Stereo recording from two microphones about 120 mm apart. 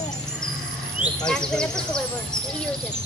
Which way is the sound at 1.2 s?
5° left (ahead or behind).